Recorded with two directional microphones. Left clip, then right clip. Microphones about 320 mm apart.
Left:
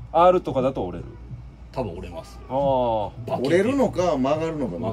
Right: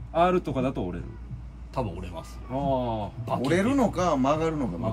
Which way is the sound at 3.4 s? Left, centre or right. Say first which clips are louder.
Left 4 dB; centre.